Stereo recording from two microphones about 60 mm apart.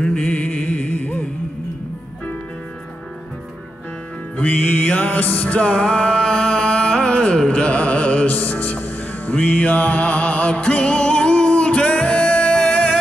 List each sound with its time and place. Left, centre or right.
0.0 s music: left
4.4 s music: left